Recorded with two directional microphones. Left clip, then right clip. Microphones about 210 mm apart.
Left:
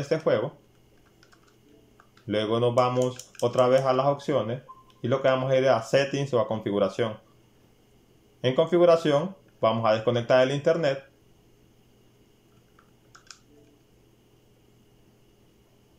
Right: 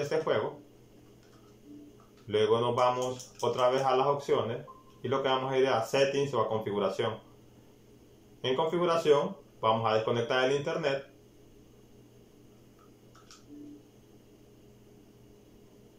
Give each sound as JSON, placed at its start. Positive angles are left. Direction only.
{"t": 2.2, "sound": "speech", "side_deg": 55}
{"t": 8.4, "sound": "speech", "side_deg": 55}